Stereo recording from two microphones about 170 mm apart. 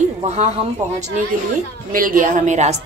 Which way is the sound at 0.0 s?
40° right (ahead or behind).